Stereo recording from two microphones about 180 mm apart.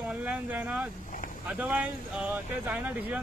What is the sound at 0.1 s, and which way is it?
Speech, 10° right (ahead or behind).